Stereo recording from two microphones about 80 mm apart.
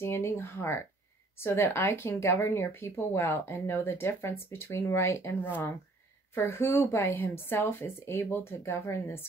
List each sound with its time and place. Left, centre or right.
0.0 s speech: left